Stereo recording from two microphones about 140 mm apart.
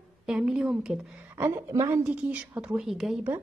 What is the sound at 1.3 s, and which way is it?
Speech, 20° right (ahead or behind).